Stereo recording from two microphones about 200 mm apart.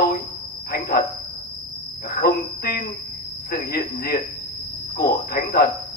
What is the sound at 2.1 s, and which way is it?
Speech, 50° left (ahead or behind).